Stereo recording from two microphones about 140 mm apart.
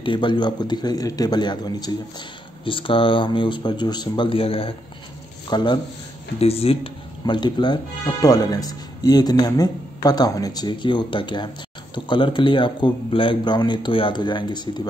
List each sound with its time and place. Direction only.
0.0 s speech: 35° left (ahead or behind)
6.4 s speech: 45° left (ahead or behind)